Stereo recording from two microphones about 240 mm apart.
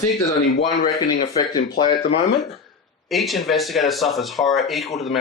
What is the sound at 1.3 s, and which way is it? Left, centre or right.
Speech, centre.